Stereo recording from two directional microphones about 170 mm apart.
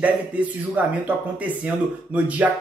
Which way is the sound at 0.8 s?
10° right (ahead or behind).